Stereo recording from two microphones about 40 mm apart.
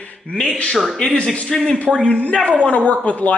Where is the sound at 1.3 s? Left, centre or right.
Left.